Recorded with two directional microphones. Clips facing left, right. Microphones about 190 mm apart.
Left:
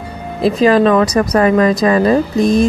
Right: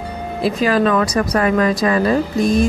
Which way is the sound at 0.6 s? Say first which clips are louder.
Left 6 dB; 30° left (ahead or behind).